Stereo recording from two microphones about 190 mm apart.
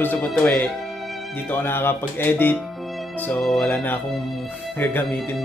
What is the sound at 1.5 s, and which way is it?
Speech, 10° left (ahead or behind).